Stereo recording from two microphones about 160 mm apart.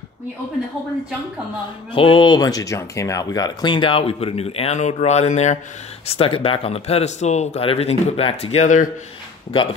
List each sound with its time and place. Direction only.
2.0 s speech: 30° left (ahead or behind)
6.0 s speech: 35° left (ahead or behind); by 8.9 s 50° left (ahead or behind)